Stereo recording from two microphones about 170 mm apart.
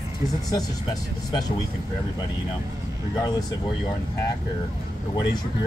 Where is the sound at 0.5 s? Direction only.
25° left (ahead or behind).